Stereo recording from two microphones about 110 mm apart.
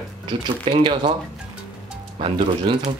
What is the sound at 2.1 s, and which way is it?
Speech, 50° right (ahead or behind).